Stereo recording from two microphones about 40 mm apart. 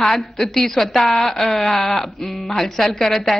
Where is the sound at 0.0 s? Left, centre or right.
Centre.